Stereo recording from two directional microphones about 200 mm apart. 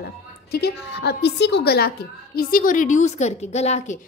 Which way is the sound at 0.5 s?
55° left (ahead or behind).